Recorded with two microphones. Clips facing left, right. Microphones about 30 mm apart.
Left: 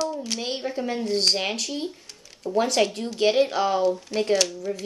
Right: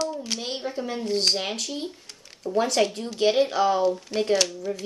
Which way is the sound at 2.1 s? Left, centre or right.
Centre.